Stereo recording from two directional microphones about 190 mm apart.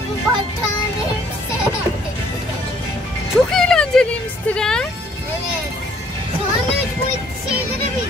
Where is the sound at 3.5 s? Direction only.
5° left (ahead or behind).